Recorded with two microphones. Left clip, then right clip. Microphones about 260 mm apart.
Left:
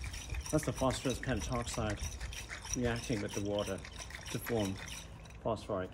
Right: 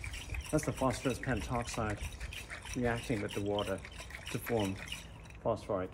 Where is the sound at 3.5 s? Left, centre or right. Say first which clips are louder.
Right 2 dB; centre.